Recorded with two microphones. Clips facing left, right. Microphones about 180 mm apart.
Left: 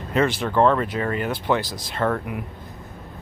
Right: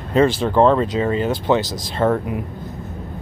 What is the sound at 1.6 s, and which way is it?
Speech, 90° right.